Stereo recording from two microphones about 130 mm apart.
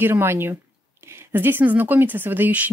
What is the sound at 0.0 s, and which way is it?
Speech, 20° right (ahead or behind).